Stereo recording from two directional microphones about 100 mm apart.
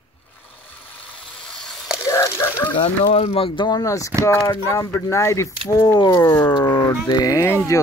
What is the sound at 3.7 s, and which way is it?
Speech, 35° left (ahead or behind).